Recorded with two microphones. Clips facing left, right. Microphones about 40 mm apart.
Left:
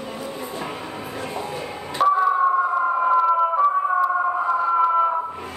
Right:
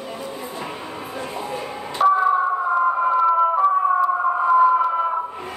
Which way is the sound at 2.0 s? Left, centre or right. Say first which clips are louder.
Right 1 dB; centre.